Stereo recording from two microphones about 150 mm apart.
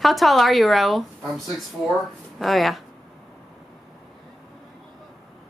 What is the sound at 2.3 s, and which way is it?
Speech, centre (ahead or behind).